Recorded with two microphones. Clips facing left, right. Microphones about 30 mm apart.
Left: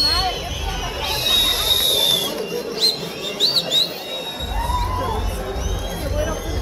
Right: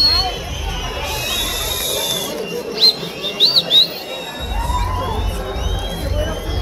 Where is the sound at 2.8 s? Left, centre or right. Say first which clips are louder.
Right 7 dB; right.